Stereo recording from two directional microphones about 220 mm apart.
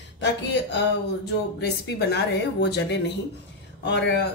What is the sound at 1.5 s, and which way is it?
A woman's voice, 50° left (ahead or behind).